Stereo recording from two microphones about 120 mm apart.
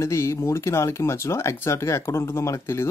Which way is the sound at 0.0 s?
25° left (ahead or behind).